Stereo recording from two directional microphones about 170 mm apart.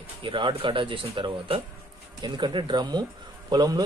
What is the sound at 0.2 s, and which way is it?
Speech, 30° right (ahead or behind).